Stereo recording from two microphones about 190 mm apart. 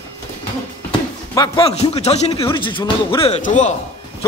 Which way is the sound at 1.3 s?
25° left (ahead or behind).